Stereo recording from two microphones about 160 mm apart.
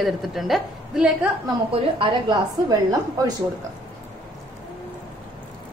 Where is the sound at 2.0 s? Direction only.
25° right (ahead or behind).